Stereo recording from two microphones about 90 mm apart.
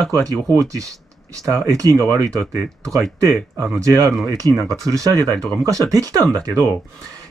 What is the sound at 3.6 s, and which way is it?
Speech, 35° right (ahead or behind).